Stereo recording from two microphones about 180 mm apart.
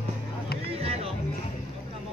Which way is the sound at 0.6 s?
35° right (ahead or behind).